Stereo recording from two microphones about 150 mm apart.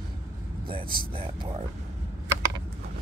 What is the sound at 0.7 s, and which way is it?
Speech, 35° right (ahead or behind).